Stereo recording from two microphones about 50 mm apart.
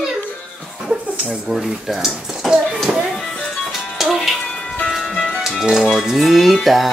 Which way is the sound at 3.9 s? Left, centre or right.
Centre.